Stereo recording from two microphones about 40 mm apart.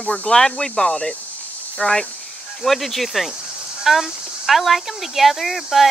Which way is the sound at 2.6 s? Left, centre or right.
Centre.